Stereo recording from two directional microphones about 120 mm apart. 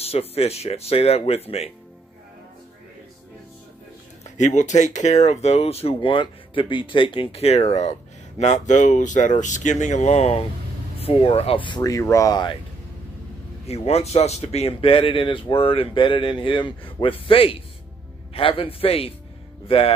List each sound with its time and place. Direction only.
0.0 s speech: 55° left (ahead or behind)
4.2 s speech: 75° left (ahead or behind); by 5.9 s 55° left (ahead or behind)
5.9 s speech: 45° left (ahead or behind)
11.8 s speech: 25° left (ahead or behind)
13.7 s speech: 60° left (ahead or behind)